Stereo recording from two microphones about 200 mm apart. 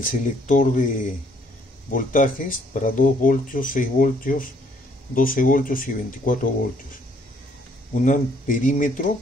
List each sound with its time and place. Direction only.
0.0 s speech: 40° left (ahead or behind)
1.9 s speech: 40° left (ahead or behind)
7.9 s speech: 40° left (ahead or behind)